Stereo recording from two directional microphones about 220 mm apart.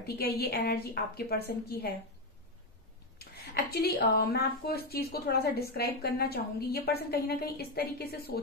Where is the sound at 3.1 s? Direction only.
45° left (ahead or behind).